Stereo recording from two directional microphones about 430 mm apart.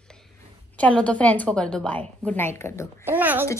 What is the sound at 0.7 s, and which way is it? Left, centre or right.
A woman's voice, centre.